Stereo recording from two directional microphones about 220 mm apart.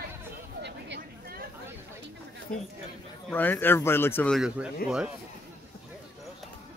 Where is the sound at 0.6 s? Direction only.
50° right (ahead or behind).